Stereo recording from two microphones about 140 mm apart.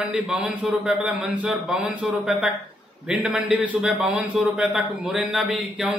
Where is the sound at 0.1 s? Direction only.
Centre (ahead or behind).